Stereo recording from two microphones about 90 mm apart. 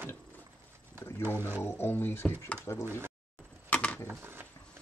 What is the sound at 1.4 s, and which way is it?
Speech, 25° right (ahead or behind).